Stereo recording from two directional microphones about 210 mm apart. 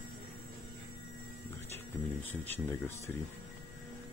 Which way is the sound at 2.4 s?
10° left (ahead or behind).